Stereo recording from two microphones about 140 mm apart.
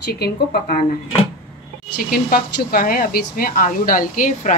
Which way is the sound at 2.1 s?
90° left.